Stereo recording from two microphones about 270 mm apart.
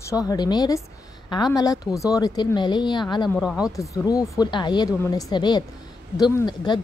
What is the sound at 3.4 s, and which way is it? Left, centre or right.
Speech, centre.